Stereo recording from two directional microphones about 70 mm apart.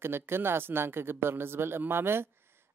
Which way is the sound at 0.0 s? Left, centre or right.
Right.